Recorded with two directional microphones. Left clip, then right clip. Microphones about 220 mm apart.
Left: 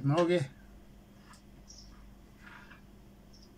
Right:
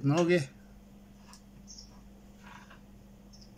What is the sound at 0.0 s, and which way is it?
Speech, centre (ahead or behind).